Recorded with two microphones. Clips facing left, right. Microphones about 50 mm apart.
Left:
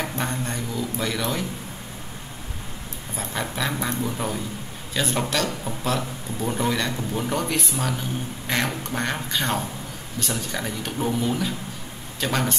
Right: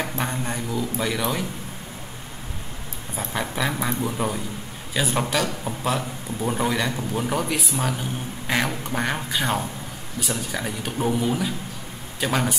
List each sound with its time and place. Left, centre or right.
0.0 s a man's voice: centre
3.3 s a man's voice: centre